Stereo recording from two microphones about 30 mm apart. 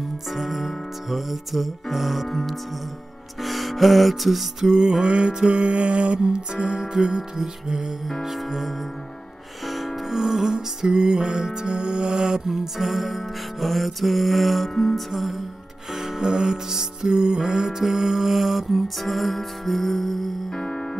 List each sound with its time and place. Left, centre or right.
0.3 s music: centre
3.4 s music: centre
4.6 s music: centre
5.0 s music: right
6.2 s music: right
8.2 s music: centre; by 12.4 s right
12.4 s music: centre
14.7 s music: centre
15.0 s music: centre
15.9 s music: centre
16.2 s music: right; by 20.6 s centre